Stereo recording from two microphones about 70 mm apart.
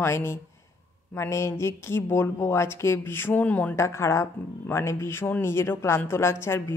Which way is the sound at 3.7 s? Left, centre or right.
Left.